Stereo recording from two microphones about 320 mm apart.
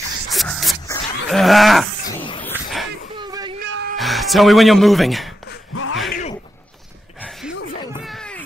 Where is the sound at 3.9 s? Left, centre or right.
Centre.